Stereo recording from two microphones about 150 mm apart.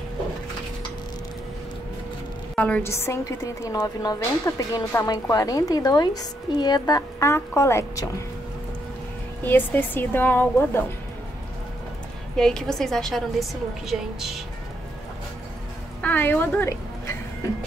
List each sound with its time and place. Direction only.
2.5 s a woman's voice: 10° left (ahead or behind)
9.4 s speech: 15° left (ahead or behind)
12.4 s a woman's voice: 5° left (ahead or behind)
16.0 s a woman's voice: 10° left (ahead or behind)